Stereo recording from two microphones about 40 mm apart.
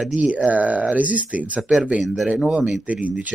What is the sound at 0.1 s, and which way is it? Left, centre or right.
Speech, right.